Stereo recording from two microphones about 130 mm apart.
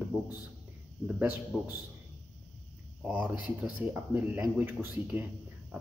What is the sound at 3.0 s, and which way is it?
A man's voice, 10° right (ahead or behind).